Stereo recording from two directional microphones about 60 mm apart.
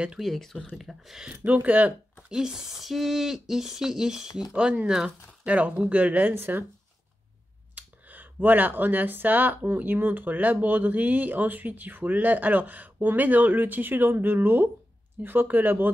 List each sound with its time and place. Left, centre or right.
0.2 s speech: centre
1.3 s speech: right
2.2 s speech: centre
5.5 s speech: right
7.7 s speech: right